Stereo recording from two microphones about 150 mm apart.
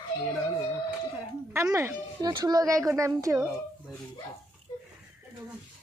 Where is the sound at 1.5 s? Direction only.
20° right (ahead or behind).